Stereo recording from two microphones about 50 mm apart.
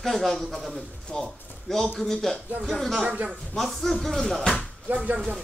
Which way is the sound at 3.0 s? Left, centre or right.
Right.